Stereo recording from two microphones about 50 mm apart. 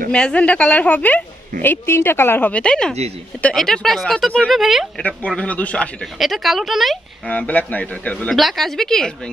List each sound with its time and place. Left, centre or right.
0.1 s a woman's voice: left
2.5 s a woman's voice: centre
4.5 s speech: centre
5.0 s a woman's voice: left
6.1 s speech: centre
7.2 s a woman's voice: left
8.3 s a woman's voice: centre